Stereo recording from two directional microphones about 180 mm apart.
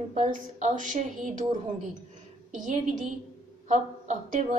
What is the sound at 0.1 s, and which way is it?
A woman's voice, 40° right (ahead or behind).